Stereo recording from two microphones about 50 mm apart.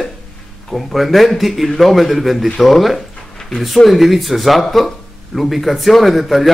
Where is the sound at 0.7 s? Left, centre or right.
Centre.